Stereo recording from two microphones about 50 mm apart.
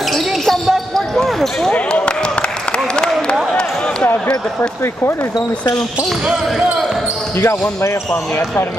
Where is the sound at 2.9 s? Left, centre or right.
Centre.